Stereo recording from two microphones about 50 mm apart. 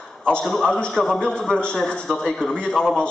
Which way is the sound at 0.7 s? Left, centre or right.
Centre.